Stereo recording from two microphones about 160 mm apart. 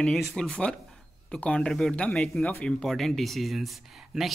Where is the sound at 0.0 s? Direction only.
5° left (ahead or behind).